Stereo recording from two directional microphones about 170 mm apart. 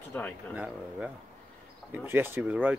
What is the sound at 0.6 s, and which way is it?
Speech, 5° right (ahead or behind).